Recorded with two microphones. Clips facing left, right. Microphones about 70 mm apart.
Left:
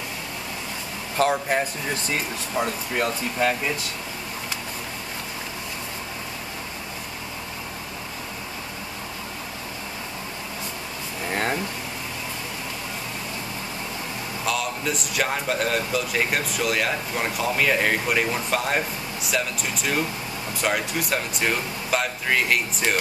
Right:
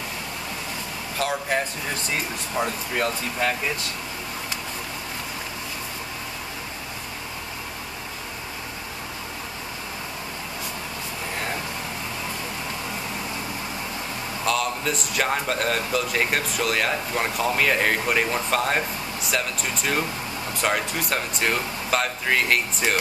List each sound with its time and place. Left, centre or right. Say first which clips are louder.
1.2 s speech: left 5 dB; left
2.5 s speech: even; centre
14.4 s speech: right 2 dB; centre